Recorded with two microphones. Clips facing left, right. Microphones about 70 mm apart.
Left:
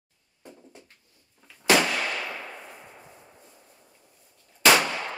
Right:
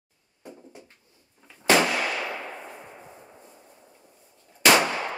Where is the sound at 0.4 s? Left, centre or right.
Centre.